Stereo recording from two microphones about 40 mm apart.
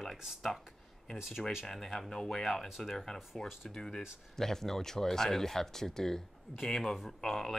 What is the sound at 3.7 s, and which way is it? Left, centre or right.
Speech, centre.